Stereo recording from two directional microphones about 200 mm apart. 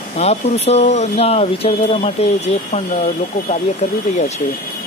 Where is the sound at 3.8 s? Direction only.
35° left (ahead or behind).